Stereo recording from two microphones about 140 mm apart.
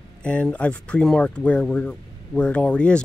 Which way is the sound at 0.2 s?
10° left (ahead or behind).